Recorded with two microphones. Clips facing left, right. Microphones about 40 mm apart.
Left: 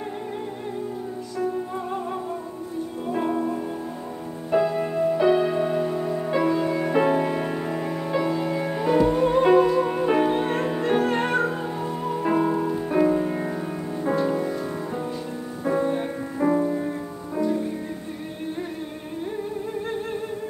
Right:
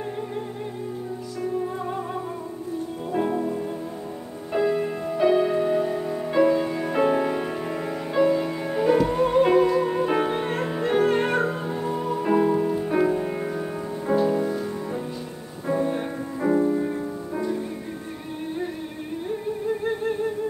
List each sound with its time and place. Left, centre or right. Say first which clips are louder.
3.1 s music: even; centre
8.5 s music: right 1 dB; centre
16.4 s music: left 1 dB; left
17.3 s music: left 4 dB; centre